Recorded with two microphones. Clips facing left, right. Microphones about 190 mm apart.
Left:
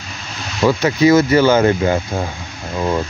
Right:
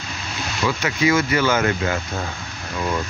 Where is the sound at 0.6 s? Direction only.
40° left (ahead or behind).